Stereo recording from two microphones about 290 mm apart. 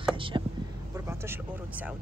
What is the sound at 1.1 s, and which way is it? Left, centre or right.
Speech, centre.